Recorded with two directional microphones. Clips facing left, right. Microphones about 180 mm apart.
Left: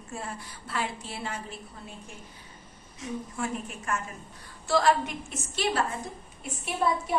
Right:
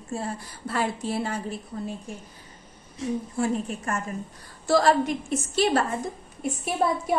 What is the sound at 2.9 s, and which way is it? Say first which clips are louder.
A woman's voice: right 7 dB; 30° right (ahead or behind).